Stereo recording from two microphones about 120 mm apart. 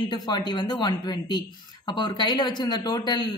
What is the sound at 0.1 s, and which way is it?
Speech, 40° left (ahead or behind).